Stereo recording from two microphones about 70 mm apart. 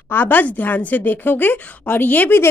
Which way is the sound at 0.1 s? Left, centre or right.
Left.